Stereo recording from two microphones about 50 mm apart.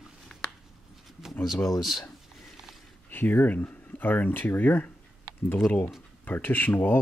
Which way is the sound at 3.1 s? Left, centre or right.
Left.